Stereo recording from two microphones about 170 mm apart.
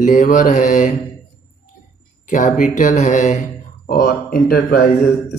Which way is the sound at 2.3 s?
50° left (ahead or behind).